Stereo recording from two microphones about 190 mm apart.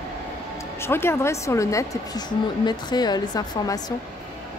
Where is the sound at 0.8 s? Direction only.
15° left (ahead or behind).